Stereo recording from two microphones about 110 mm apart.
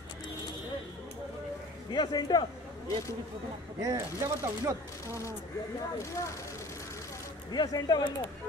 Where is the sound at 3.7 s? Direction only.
30° right (ahead or behind).